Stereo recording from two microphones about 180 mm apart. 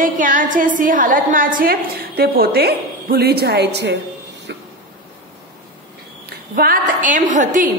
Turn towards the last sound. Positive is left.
turn(degrees=-45)  # may be behind; listen again after turning